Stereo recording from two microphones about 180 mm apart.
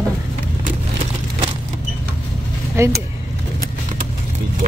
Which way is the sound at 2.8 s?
15° right (ahead or behind).